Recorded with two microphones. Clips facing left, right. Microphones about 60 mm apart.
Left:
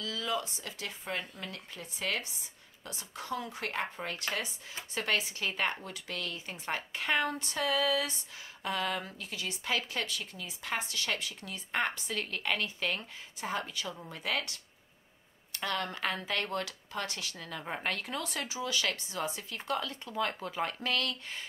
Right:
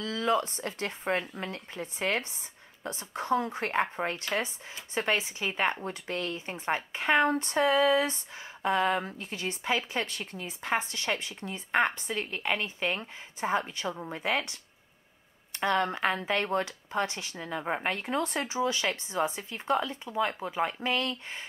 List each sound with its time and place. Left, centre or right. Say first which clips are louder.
0.0 s speech: right 7 dB; right
9.7 s speech: right 4 dB; right
10.0 s speech: right 2 dB; right